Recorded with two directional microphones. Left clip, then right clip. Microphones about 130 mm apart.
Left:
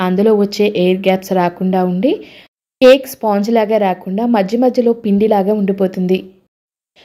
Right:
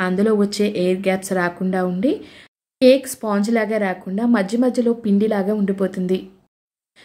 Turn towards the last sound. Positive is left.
turn(degrees=30)  # may be behind; listen again after turning